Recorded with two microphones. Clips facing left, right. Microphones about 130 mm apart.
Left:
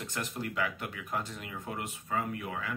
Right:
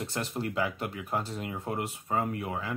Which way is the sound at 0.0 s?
30° right (ahead or behind).